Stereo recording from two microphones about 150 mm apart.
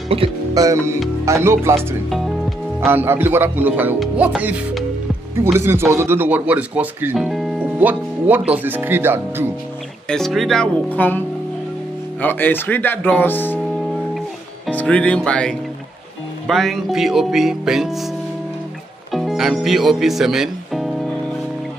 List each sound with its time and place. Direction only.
0.6 s speech: 20° right (ahead or behind)
1.8 s speech: centre (ahead or behind)
2.9 s speech: 15° right (ahead or behind)
5.6 s speech: 15° right (ahead or behind)
7.2 s music: centre (ahead or behind)
7.8 s speech: 10° right (ahead or behind)
10.0 s speech: 5° left (ahead or behind)
14.7 s speech: 10° left (ahead or behind)
19.1 s speech: centre (ahead or behind)